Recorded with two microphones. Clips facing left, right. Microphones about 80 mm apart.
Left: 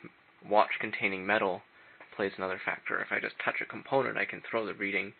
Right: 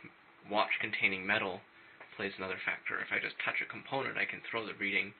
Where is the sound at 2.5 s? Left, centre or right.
Left.